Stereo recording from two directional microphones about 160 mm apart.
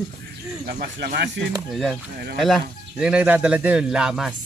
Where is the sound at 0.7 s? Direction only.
85° right.